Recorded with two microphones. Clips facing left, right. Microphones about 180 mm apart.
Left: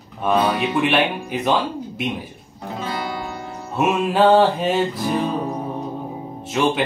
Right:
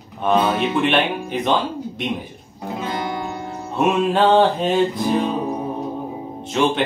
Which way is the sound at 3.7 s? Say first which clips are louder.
Right 1 dB; 5° left (ahead or behind).